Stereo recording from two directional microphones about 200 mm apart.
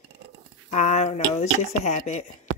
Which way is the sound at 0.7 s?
35° left (ahead or behind).